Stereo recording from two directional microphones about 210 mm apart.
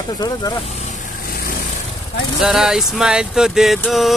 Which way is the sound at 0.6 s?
35° left (ahead or behind).